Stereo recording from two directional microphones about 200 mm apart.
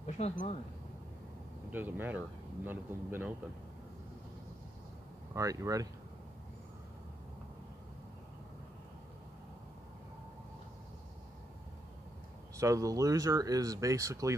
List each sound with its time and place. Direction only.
0.0 s speech: 35° left (ahead or behind)
1.7 s speech: 10° right (ahead or behind)
5.3 s speech: 15° right (ahead or behind)
12.5 s speech: 15° right (ahead or behind)